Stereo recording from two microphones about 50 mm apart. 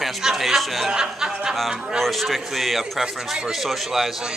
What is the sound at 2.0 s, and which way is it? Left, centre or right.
A man's voice, centre.